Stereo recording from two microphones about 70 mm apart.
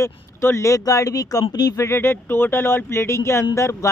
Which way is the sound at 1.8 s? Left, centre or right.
Left.